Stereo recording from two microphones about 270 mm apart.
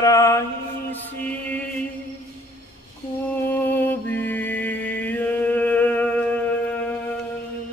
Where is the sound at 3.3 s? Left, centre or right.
Centre.